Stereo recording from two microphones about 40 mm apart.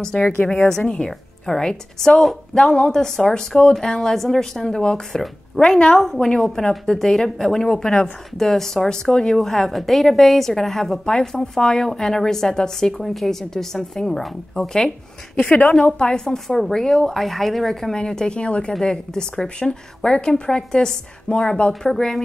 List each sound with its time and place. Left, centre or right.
0.7 s a woman's voice: centre
5.6 s a woman's voice: centre
6.1 s a woman's voice: centre
14.6 s a woman's voice: left
16.4 s a woman's voice: centre
17.9 s a woman's voice: centre
18.4 s a woman's voice: left
18.7 s a woman's voice: centre
21.8 s a woman's voice: centre